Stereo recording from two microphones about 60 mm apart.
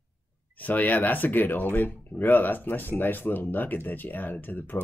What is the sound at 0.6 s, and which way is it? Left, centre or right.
Speech, left.